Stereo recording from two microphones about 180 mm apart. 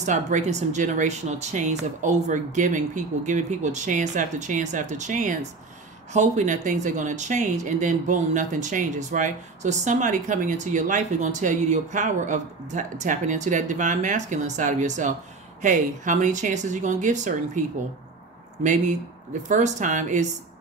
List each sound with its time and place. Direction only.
0.0 s speech: 45° right (ahead or behind)
19.4 s speech: 40° right (ahead or behind)